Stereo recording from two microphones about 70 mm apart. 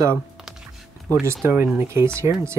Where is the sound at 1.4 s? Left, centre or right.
Right.